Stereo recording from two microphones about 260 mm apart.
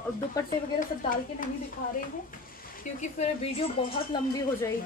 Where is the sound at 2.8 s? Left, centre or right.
Left.